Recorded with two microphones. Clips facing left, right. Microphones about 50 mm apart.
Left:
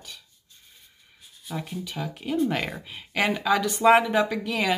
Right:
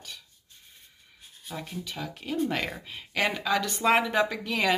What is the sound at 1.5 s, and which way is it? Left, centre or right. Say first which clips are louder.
Speech: left 4 dB; centre.